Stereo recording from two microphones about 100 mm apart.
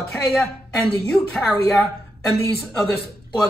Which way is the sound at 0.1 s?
5° left (ahead or behind).